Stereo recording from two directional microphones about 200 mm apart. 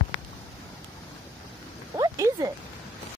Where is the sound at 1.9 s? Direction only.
15° right (ahead or behind).